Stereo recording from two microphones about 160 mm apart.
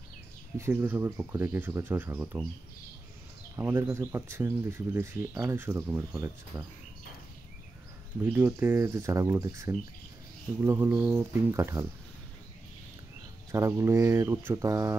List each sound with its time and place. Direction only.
0.6 s speech: 15° right (ahead or behind)
3.5 s speech: 10° right (ahead or behind)
8.2 s speech: 15° right (ahead or behind)
13.5 s speech: 15° right (ahead or behind)